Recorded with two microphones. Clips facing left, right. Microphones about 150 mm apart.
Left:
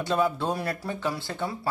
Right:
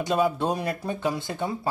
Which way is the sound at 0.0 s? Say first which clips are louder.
Right 2 dB; 15° right (ahead or behind).